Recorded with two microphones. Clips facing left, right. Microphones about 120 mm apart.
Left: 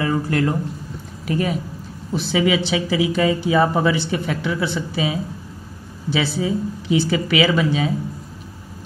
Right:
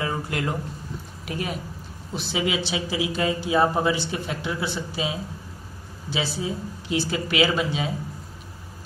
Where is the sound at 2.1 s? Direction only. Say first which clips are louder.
Left 7 dB; 50° left (ahead or behind).